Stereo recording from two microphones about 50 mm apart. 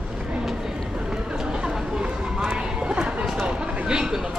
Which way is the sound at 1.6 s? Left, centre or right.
Centre.